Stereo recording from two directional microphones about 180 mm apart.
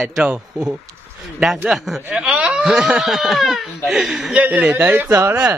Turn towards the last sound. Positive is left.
turn(degrees=-10)  # may be behind; listen again after turning